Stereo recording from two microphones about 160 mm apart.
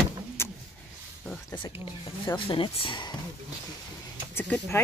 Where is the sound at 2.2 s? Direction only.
30° left (ahead or behind).